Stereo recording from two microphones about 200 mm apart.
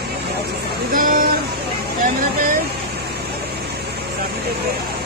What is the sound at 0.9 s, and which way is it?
Speech, 45° right (ahead or behind).